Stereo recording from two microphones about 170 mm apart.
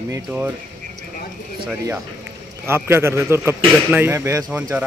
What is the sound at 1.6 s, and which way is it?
Speech, 10° right (ahead or behind).